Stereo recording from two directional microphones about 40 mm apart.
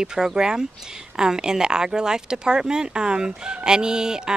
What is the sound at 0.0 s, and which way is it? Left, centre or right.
A woman's voice, centre.